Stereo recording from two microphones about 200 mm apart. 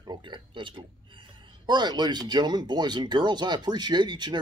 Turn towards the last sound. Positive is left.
turn(degrees=-20)  # may be behind; listen again after turning